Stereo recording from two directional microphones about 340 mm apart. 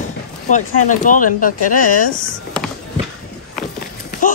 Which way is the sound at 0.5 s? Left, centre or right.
Left.